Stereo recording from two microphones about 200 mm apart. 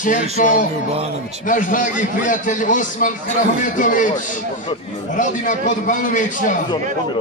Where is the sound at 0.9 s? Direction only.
30° right (ahead or behind).